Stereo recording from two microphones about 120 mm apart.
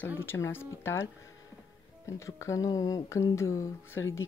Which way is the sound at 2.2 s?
25° left (ahead or behind).